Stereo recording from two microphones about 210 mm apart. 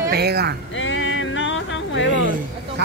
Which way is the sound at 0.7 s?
65° left (ahead or behind).